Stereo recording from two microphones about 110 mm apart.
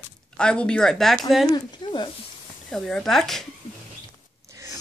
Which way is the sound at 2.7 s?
5° left (ahead or behind).